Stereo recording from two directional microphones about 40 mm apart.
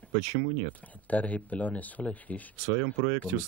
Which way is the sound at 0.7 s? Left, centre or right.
Left.